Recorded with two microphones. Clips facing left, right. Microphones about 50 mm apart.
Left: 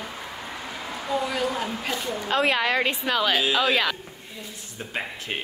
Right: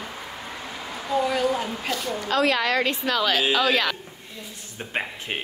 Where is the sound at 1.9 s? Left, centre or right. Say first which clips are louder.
Right 1 dB; left.